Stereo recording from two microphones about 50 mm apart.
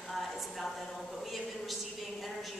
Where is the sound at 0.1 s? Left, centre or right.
Centre.